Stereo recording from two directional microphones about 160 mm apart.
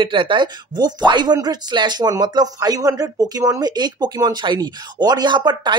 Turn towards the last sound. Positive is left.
turn(degrees=-25)  # may be behind; listen again after turning